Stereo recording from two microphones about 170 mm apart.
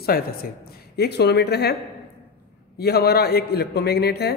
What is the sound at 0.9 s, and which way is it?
Speech, 75° left (ahead or behind).